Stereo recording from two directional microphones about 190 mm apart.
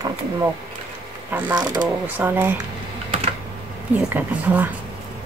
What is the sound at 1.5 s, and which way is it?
Speech, 20° right (ahead or behind).